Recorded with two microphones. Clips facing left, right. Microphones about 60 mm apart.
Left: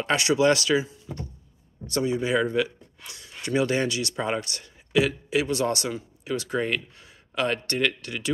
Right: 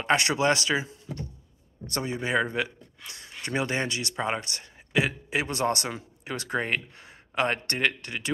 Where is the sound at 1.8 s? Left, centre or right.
Right.